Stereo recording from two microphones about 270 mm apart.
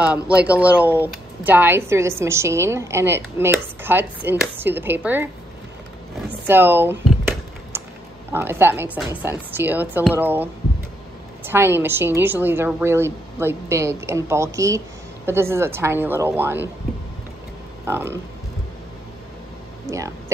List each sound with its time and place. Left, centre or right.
0.0 s speech: centre
6.4 s speech: centre
7.7 s a sound: centre
8.3 s speech: centre
17.8 s speech: centre
19.9 s speech: centre